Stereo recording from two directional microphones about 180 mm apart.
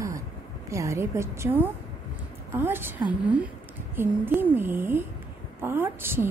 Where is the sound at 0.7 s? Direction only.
15° right (ahead or behind).